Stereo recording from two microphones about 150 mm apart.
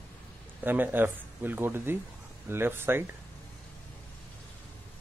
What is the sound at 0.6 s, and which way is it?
Speech, 15° right (ahead or behind).